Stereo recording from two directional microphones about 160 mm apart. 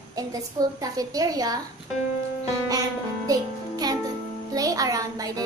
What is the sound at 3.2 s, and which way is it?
Music, 25° right (ahead or behind).